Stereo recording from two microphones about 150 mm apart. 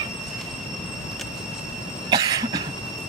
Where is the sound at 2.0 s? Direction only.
30° right (ahead or behind).